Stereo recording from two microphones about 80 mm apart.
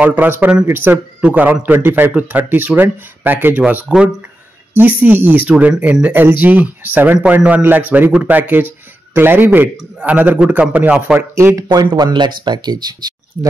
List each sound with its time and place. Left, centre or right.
0.0 s a man's voice: right
3.9 s a man's voice: centre
11.1 s speech: right
11.7 s speech: right